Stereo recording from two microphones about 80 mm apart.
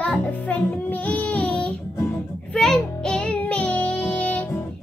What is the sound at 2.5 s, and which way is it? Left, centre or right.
Child singing, centre.